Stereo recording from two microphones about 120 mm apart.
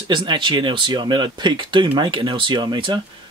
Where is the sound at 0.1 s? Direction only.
45° right (ahead or behind).